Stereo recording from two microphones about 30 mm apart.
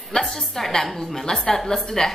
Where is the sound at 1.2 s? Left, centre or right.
Left.